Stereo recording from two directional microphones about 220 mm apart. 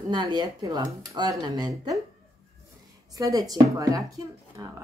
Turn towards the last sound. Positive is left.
turn(degrees=-15)  # may be behind; listen again after turning